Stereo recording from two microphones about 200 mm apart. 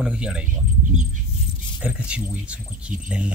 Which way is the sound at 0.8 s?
35° right (ahead or behind).